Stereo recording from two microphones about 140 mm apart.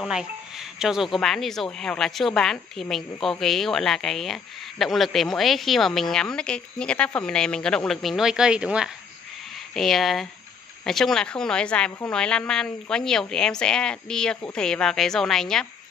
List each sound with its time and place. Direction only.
0.1 s speech: 5° right (ahead or behind)